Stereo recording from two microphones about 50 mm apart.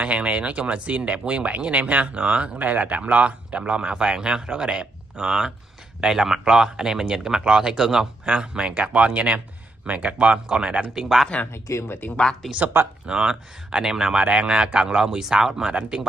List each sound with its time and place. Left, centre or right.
0.0 s speech: right
11.0 s speech: centre
11.5 s speech: left
12.4 s speech: centre
13.0 s speech: centre